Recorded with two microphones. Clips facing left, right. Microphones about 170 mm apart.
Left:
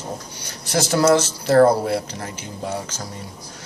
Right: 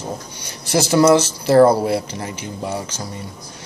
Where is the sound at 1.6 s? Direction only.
5° right (ahead or behind).